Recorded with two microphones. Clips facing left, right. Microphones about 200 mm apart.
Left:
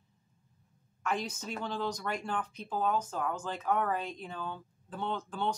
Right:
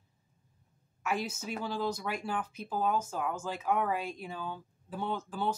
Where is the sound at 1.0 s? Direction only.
5° right (ahead or behind).